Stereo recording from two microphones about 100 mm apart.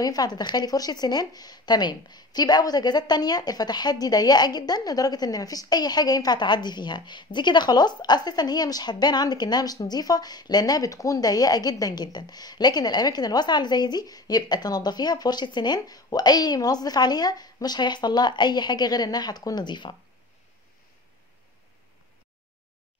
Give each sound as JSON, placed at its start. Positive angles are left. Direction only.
{"t": 0.0, "sound": "speech", "side_deg": 40}